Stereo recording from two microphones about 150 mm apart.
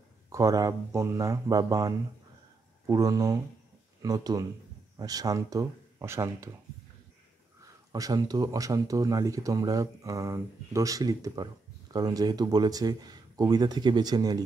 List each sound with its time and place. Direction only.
0.3 s speech: 20° right (ahead or behind)
7.6 s speech: 25° right (ahead or behind)